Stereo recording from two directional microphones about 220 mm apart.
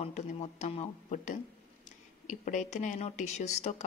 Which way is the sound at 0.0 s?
30° left (ahead or behind).